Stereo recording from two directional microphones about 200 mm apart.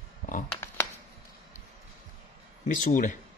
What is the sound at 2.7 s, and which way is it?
Speech, 40° left (ahead or behind).